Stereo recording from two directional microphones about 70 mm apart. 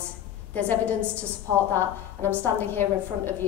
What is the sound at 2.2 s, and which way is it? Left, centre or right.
A woman's voice, left.